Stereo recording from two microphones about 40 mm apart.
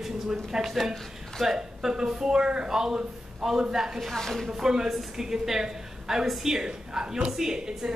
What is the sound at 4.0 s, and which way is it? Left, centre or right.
Speech, centre.